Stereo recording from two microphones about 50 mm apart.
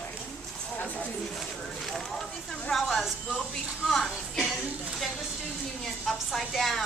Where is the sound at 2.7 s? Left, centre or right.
Centre.